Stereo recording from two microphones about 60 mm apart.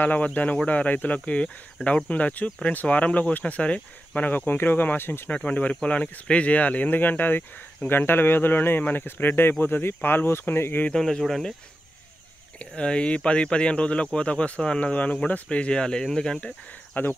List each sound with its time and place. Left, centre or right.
0.0 s speech: left
5.3 s speech: left
10.9 s speech: centre
12.5 s speech: centre
17.0 s speech: left